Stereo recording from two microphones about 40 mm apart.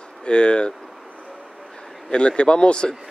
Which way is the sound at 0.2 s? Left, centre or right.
Left.